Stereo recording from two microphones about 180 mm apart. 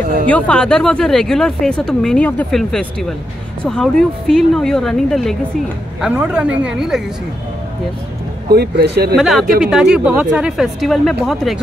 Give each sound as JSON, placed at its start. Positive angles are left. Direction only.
{"t": 0.0, "sound": "speech", "side_deg": -45}
{"t": 0.3, "sound": "speech", "side_deg": 5}
{"t": 8.5, "sound": "speech", "side_deg": -65}
{"t": 9.1, "sound": "speech", "side_deg": 0}